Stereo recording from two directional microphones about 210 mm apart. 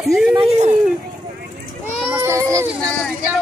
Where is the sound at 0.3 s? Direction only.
25° right (ahead or behind).